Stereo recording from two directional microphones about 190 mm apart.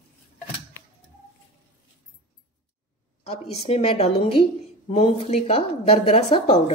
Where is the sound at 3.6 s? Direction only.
30° left (ahead or behind).